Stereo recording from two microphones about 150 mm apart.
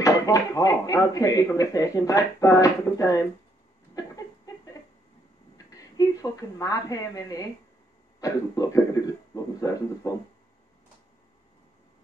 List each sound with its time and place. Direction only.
0.0 s speech: 25° left (ahead or behind)
4.5 s a sound: 25° left (ahead or behind)
5.7 s speech: 20° left (ahead or behind)